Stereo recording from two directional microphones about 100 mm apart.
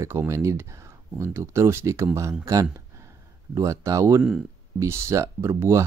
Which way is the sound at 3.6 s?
35° right (ahead or behind).